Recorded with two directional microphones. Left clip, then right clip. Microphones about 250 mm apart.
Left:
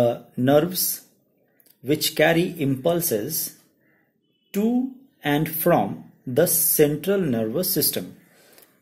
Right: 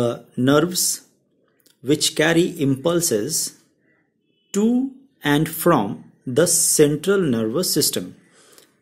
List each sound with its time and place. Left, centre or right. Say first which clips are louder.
0.0 s speech: even; centre